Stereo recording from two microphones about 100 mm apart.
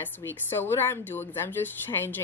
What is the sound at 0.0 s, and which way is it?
A woman's voice, 25° left (ahead or behind).